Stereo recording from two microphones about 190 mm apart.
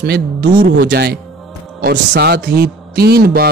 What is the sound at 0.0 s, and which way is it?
A man's voice, 60° right (ahead or behind).